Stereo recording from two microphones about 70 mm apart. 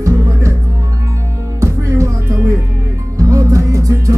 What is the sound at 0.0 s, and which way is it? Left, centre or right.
Music, right.